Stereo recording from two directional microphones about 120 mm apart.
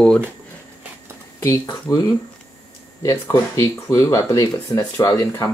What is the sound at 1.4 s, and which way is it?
Speech, 25° left (ahead or behind).